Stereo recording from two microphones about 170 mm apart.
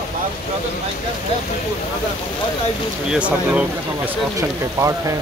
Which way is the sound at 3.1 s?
5° right (ahead or behind).